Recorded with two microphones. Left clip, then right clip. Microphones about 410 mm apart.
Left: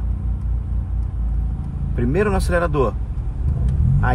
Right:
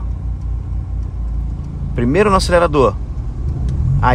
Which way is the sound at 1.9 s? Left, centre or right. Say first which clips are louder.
Right 7 dB; right.